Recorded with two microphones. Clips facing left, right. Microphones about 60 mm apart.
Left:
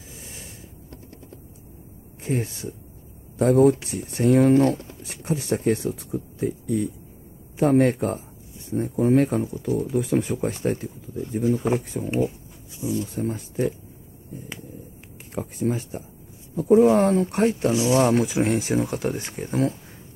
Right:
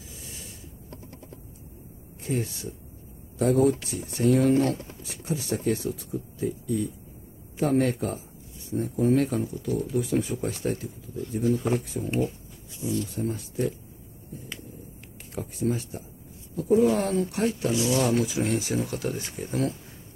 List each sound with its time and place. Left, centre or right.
0.1 s snort: left
2.2 s speech: left
9.9 s speech: left
11.4 s speech: centre
13.1 s speech: left
15.4 s speech: left
17.6 s speech: left